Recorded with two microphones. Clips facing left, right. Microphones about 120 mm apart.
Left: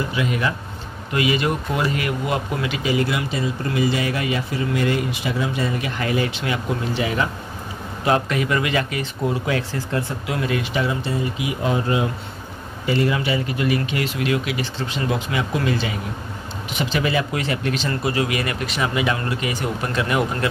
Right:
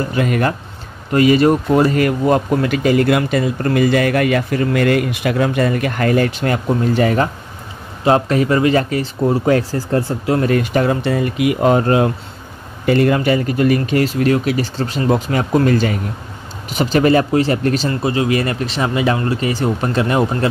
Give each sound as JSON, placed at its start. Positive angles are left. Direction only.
{"t": 0.1, "sound": "speech", "side_deg": -50}
{"t": 8.0, "sound": "speech", "side_deg": -35}
{"t": 18.0, "sound": "speech", "side_deg": -25}